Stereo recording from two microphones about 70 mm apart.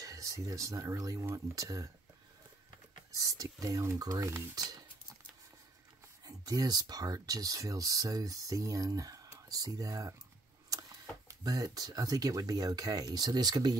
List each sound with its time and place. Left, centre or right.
0.0 s speech: right
3.1 s speech: right
4.6 s speech: right
6.2 s speech: right